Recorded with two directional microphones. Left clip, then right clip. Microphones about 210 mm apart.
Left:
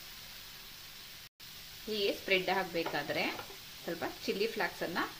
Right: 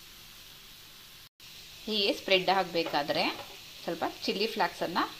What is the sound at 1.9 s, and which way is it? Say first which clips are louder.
Speech: right 5 dB; 10° right (ahead or behind).